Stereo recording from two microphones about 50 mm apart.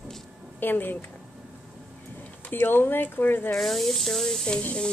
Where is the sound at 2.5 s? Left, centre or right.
Left.